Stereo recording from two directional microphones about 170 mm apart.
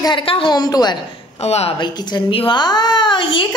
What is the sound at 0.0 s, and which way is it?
A child's voice, 30° left (ahead or behind).